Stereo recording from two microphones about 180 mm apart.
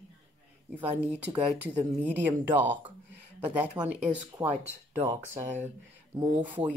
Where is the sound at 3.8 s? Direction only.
25° right (ahead or behind).